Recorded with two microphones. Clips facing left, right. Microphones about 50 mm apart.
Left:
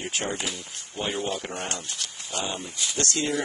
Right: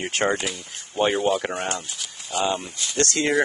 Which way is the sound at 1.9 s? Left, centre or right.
Centre.